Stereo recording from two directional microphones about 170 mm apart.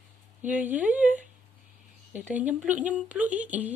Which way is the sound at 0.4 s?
10° right (ahead or behind).